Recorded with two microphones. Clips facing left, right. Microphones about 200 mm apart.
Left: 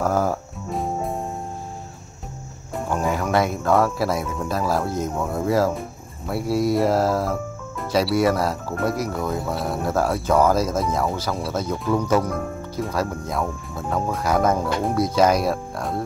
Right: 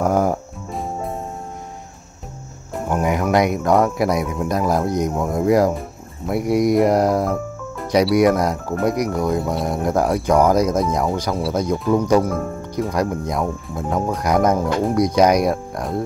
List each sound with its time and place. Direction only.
0.0 s music: 20° right (ahead or behind)
0.7 s music: centre (ahead or behind)
2.9 s speech: 15° right (ahead or behind)
7.8 s music: 15° right (ahead or behind)
8.2 s speech: 15° right (ahead or behind)
9.3 s speech: centre (ahead or behind)
9.7 s speech: 15° right (ahead or behind)